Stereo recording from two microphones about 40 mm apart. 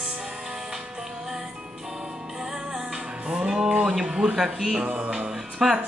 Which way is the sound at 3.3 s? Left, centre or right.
Centre.